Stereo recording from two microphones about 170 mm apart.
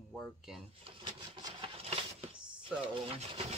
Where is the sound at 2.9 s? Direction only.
35° right (ahead or behind).